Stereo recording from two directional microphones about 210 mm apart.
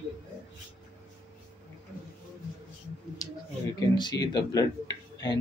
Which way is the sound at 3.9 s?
20° left (ahead or behind).